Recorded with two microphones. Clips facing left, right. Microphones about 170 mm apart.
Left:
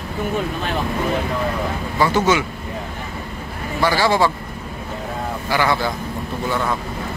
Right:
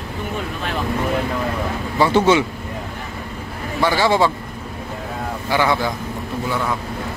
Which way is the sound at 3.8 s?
20° right (ahead or behind).